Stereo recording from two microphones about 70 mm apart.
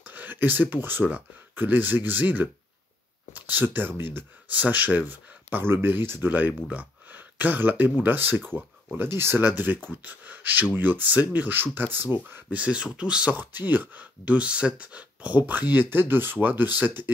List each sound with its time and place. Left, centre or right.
0.0 s speech: right
6.3 s speech: right
12.5 s speech: centre
13.4 s speech: right